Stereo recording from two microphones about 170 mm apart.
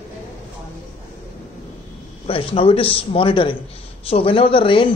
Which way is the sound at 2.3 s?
35° left (ahead or behind).